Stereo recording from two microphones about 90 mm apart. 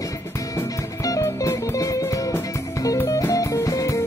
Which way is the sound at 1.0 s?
40° left (ahead or behind).